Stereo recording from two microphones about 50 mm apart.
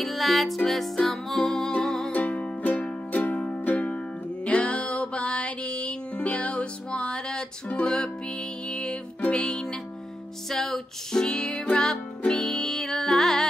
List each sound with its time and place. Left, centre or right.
0.0 s music: centre
2.1 s music: left; by 13.5 s centre